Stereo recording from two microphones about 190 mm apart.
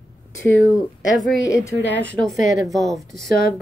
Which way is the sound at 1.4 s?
15° left (ahead or behind).